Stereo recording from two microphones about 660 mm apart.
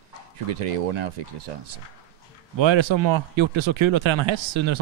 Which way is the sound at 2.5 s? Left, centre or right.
Right.